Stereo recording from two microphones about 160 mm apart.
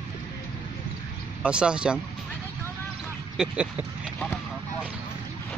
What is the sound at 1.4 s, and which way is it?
Speech, 5° right (ahead or behind).